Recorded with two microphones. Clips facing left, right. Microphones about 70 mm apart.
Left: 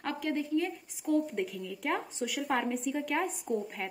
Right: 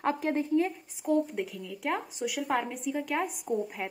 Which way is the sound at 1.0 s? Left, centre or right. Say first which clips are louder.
Right 2 dB; centre.